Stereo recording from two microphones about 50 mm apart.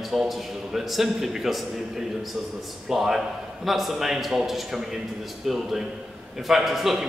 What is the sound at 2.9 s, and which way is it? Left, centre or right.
A man's voice, centre.